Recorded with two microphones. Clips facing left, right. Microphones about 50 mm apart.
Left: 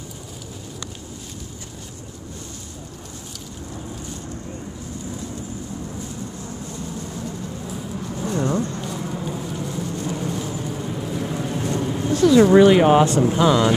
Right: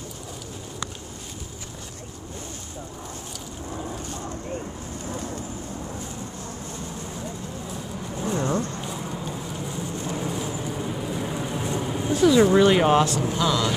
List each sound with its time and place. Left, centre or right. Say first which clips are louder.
8.4 s a sound: left 4 dB; centre
10.0 s vehicle: even; centre
12.3 s speech: left 5 dB; centre
13.3 s speech: left 6 dB; left